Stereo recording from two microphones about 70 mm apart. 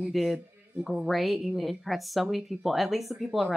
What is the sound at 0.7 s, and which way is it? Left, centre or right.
Speech, centre.